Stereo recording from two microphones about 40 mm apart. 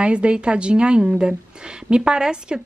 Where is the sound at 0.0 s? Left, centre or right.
Right.